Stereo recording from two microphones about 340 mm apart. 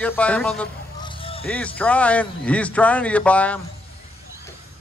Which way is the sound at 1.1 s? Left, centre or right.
Centre.